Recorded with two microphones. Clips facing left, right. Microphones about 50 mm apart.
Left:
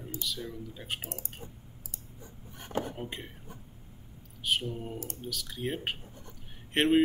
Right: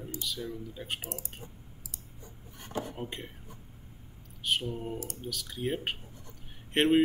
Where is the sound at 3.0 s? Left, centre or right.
Centre.